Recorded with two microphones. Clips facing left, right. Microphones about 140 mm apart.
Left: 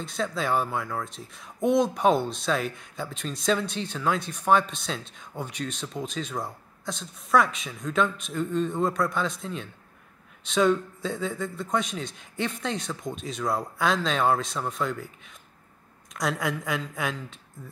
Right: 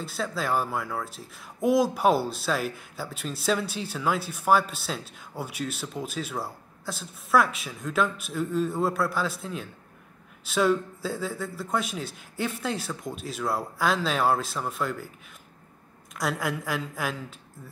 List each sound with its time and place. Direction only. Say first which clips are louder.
0.0 s speech: left 1 dB; 5° right (ahead or behind)
16.1 s speech: left 1 dB; centre (ahead or behind)